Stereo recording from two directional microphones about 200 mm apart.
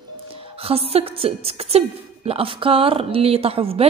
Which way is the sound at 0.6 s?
30° right (ahead or behind).